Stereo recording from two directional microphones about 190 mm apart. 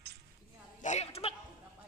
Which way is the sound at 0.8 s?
35° left (ahead or behind).